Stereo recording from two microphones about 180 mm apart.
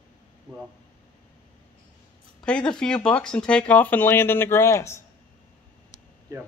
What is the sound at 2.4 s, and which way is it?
Speech, 5° left (ahead or behind).